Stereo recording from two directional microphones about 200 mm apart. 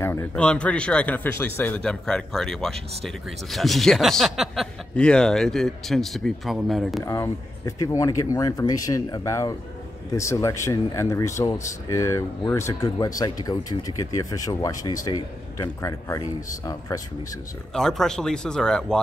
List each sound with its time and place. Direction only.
0.0 s speech: 10° left (ahead or behind)
7.1 s speech: 15° left (ahead or behind)
17.7 s speech: centre (ahead or behind)